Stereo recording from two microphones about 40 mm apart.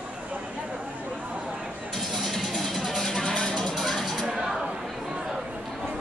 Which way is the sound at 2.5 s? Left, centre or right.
Centre.